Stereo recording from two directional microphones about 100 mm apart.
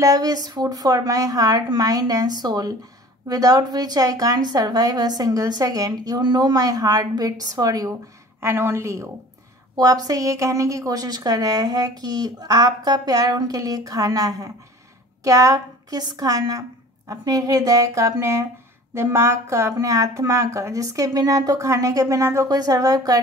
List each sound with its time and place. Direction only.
0.0 s a woman's voice: 40° right (ahead or behind)
8.4 s a woman's voice: 25° right (ahead or behind)